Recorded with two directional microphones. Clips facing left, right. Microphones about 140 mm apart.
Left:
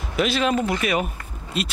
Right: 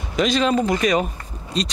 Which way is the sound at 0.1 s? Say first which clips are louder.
Right 2 dB; 5° left (ahead or behind).